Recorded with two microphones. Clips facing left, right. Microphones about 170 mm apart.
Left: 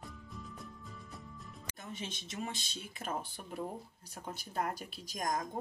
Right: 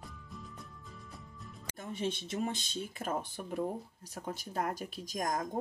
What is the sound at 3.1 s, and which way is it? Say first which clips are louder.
Speech: right 2 dB; 40° right (ahead or behind).